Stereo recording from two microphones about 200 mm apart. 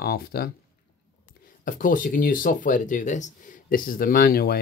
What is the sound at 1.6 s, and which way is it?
Speech, 40° left (ahead or behind).